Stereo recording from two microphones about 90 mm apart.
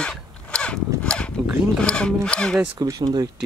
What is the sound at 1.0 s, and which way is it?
Speech, 10° left (ahead or behind).